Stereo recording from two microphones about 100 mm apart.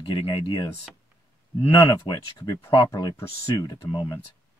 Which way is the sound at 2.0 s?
40° left (ahead or behind).